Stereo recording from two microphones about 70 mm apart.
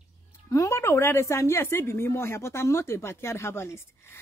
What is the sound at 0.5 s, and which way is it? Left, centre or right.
A woman's voice, left.